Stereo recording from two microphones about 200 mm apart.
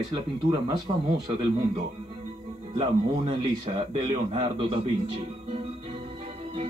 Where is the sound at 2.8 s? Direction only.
25° right (ahead or behind).